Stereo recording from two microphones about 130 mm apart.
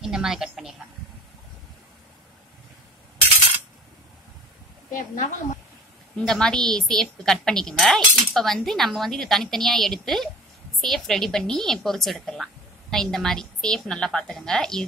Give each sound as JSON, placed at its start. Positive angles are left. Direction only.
{"t": 0.0, "sound": "a woman's voice", "side_deg": -5}
{"t": 4.9, "sound": "a woman's voice", "side_deg": 90}
{"t": 6.1, "sound": "a woman's voice", "side_deg": 5}